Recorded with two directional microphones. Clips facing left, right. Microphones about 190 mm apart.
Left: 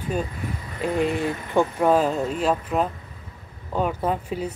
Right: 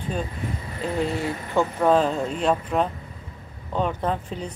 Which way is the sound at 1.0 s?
15° left (ahead or behind).